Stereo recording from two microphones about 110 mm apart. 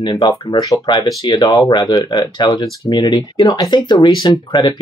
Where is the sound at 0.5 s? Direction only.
40° left (ahead or behind).